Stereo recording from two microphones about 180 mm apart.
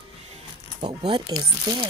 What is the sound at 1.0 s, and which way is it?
Speech, 25° right (ahead or behind).